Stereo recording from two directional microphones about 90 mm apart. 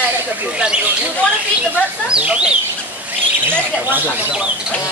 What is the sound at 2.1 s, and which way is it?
Speech, 10° right (ahead or behind).